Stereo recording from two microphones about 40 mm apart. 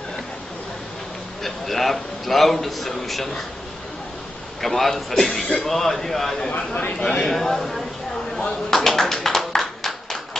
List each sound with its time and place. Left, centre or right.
1.4 s a man's voice: centre
4.6 s speech: centre
6.5 s speech: left
7.0 s speech: centre
8.6 s clapping: centre